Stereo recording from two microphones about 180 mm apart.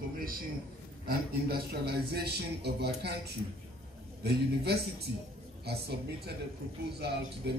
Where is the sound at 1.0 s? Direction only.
60° right (ahead or behind).